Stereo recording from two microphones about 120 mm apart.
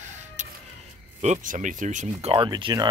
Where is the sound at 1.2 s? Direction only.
80° right.